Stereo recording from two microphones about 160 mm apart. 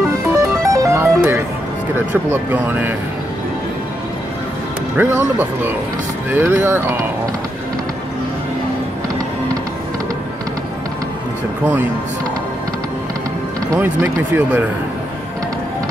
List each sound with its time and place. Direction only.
0.3 s music: 20° right (ahead or behind)
2.5 s speech: 10° right (ahead or behind)
4.9 s speech: 10° right (ahead or behind)
13.7 s speech: 10° right (ahead or behind)